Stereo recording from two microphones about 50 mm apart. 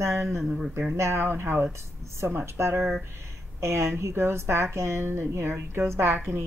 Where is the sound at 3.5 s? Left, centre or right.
Right.